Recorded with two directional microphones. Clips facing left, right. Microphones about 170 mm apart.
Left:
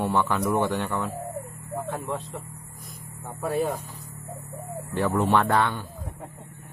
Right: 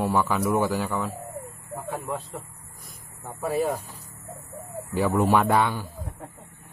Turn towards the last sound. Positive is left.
turn(degrees=-10)  # may be behind; listen again after turning